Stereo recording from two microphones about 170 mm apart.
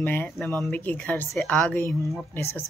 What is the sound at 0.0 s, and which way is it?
Speech, 10° left (ahead or behind).